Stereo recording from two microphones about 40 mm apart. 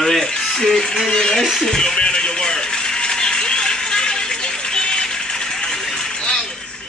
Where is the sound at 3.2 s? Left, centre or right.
Left.